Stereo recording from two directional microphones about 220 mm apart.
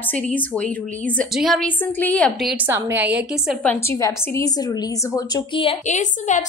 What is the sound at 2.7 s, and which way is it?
Speech, 10° right (ahead or behind).